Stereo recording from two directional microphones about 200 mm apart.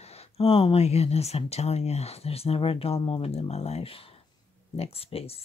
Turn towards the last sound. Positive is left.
turn(degrees=30)  # may be behind; listen again after turning